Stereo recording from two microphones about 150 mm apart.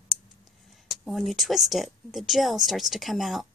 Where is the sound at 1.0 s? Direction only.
Centre (ahead or behind).